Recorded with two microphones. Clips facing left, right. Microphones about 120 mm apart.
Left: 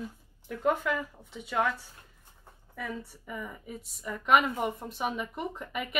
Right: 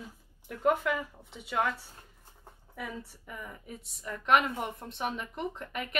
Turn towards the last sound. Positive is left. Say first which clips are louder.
# left 2 dB
turn(degrees=5)  # may be behind; listen again after turning